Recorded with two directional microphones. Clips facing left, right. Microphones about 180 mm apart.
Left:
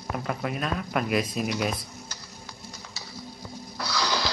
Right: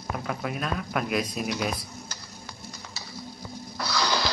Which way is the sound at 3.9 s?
55° right (ahead or behind).